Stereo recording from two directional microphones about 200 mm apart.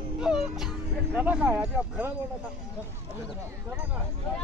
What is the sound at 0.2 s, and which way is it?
Speech, 5° right (ahead or behind).